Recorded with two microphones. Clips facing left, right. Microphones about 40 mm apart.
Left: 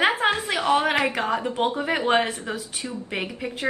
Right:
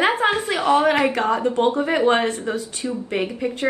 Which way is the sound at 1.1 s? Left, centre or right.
Centre.